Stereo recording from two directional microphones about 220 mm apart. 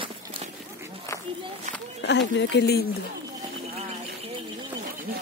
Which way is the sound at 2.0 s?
55° left (ahead or behind).